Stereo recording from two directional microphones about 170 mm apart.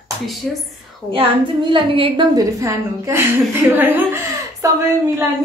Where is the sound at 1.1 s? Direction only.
30° right (ahead or behind).